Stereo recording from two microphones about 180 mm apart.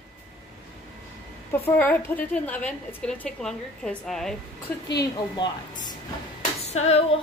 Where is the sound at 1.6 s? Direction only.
10° left (ahead or behind).